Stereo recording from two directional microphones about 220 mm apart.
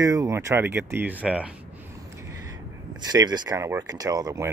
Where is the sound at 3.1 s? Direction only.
20° right (ahead or behind).